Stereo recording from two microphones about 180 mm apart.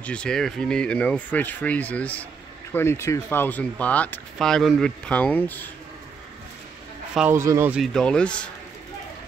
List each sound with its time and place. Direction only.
0.0 s speech: 5° left (ahead or behind)
7.2 s speech: 15° right (ahead or behind)
7.8 s speech: 5° left (ahead or behind)